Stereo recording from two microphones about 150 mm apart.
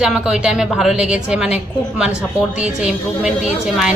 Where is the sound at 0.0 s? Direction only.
5° right (ahead or behind).